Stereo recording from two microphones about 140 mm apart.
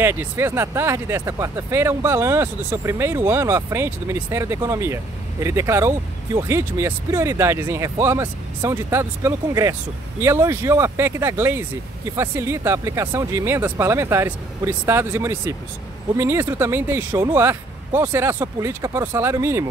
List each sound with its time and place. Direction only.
0.0 s speech: 15° right (ahead or behind)